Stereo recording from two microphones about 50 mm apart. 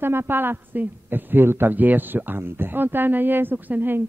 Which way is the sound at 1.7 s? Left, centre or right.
Right.